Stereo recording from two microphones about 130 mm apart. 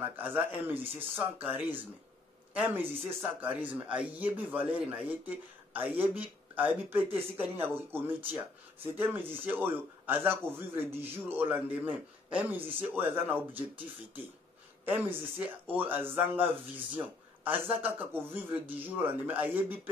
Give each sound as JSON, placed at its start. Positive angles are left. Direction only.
{"t": 0.2, "sound": "speech", "side_deg": -15}
{"t": 14.9, "sound": "speech", "side_deg": -15}